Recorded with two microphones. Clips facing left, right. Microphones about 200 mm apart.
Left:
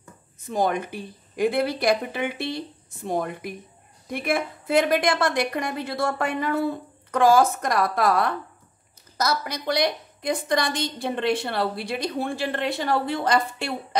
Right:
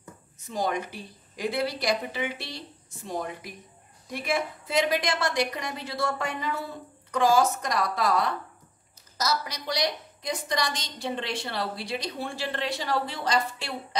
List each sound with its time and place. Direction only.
0.5 s a woman's voice: 55° left (ahead or behind)